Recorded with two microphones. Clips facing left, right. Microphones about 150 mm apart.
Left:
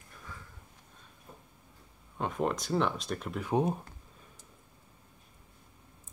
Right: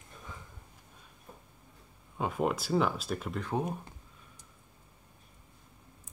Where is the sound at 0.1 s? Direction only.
20° right (ahead or behind).